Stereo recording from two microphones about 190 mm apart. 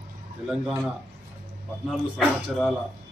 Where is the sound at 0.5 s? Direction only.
5° right (ahead or behind).